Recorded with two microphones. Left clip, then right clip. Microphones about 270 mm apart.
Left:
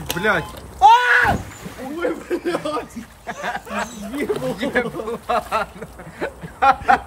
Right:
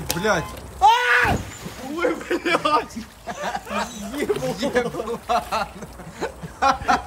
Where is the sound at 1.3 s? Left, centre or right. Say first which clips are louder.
Left 3 dB; centre.